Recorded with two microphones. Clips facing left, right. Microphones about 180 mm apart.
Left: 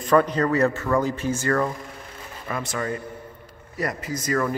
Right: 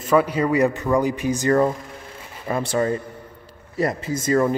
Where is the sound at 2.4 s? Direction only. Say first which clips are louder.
Right 7 dB; 30° right (ahead or behind).